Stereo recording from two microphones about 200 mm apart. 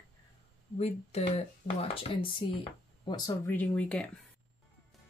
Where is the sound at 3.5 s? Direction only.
5° left (ahead or behind).